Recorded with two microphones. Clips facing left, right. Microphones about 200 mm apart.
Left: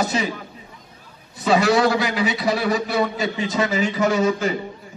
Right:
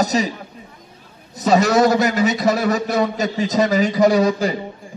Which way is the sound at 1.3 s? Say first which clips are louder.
Right 2 dB; 40° right (ahead or behind).